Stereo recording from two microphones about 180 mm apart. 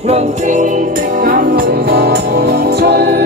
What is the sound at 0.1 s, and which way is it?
Music, 40° right (ahead or behind).